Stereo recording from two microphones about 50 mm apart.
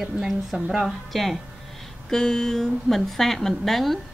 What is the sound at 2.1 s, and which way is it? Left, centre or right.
A woman's voice, centre.